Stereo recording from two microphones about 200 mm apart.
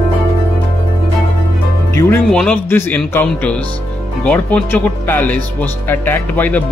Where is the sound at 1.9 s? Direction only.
5° left (ahead or behind).